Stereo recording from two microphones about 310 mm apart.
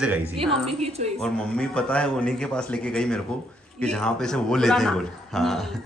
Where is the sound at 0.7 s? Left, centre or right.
Centre.